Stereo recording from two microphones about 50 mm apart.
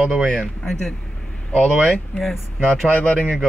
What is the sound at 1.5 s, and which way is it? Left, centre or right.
Speech, left.